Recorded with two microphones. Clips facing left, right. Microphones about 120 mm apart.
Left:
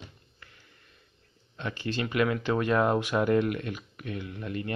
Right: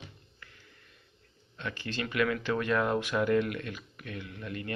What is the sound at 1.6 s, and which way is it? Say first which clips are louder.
Speech: left 4 dB; 25° left (ahead or behind).